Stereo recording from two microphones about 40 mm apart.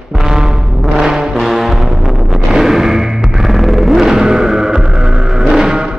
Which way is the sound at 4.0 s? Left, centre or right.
Centre.